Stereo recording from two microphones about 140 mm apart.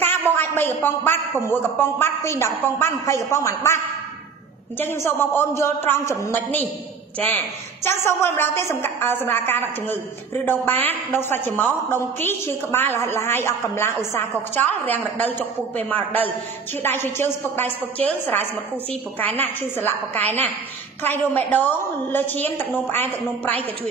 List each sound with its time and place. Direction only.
0.3 s a woman's voice: 15° left (ahead or behind)
8.0 s a woman's voice: 20° left (ahead or behind)